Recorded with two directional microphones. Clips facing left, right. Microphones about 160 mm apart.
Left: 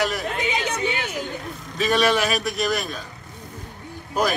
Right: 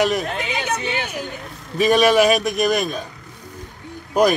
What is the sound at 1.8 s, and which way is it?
A man's voice, 15° right (ahead or behind).